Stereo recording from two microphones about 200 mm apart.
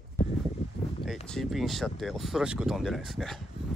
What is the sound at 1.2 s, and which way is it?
Speech, centre (ahead or behind).